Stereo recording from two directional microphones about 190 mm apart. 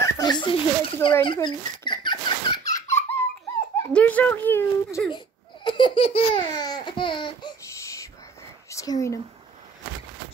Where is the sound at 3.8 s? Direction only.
10° left (ahead or behind).